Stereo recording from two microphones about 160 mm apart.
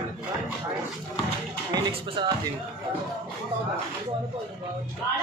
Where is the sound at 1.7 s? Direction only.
25° right (ahead or behind).